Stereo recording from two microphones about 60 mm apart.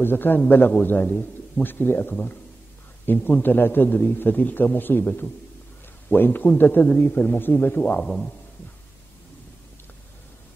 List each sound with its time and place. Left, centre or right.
0.0 s a man's voice: left
6.0 s a man's voice: left
8.0 s speech: centre